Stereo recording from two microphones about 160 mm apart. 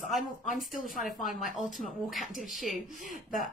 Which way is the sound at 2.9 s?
55° left (ahead or behind).